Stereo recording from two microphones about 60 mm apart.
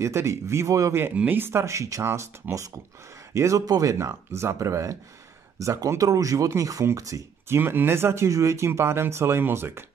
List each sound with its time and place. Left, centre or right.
0.0 s speech: right
1.1 s speech: right
2.4 s speech: right
3.3 s speech: right
7.4 s speech: right
8.3 s speech: right